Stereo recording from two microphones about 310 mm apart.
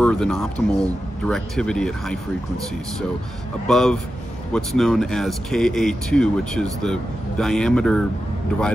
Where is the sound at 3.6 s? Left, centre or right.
Centre.